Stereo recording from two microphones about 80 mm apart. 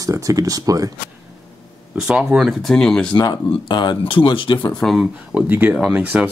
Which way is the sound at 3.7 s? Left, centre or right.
Left.